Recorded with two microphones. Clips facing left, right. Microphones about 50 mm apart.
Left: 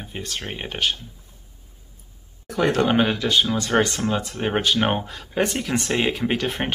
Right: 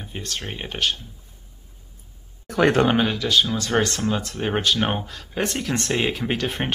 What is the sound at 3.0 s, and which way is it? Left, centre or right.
Speech, centre.